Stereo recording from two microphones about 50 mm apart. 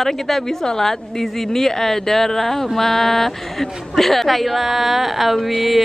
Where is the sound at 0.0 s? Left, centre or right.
Centre.